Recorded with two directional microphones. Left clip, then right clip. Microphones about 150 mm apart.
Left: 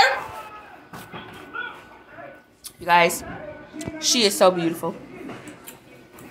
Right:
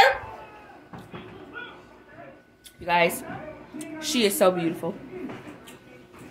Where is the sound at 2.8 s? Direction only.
5° left (ahead or behind).